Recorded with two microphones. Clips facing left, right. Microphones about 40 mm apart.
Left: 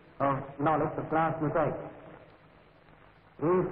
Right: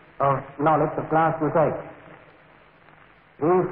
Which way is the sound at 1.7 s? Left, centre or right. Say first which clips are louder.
Right 7 dB; right.